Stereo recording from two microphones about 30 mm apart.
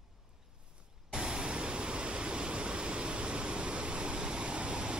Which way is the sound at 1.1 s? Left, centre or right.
Right.